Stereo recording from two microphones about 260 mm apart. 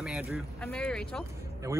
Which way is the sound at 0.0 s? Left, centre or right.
Centre.